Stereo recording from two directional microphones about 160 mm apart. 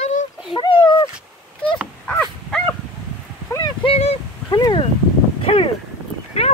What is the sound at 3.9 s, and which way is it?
Speech, 40° left (ahead or behind).